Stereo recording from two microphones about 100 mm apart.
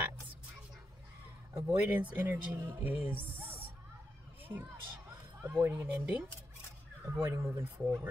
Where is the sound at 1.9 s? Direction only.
15° right (ahead or behind).